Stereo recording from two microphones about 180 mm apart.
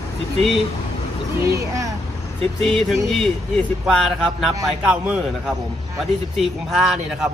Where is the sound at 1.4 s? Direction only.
15° right (ahead or behind).